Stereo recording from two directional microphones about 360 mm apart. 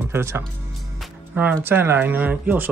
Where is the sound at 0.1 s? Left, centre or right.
Centre.